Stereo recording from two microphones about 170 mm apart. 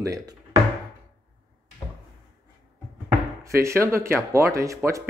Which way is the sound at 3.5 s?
15° right (ahead or behind).